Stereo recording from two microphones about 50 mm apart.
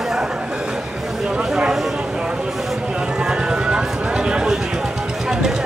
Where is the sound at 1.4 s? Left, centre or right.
Centre.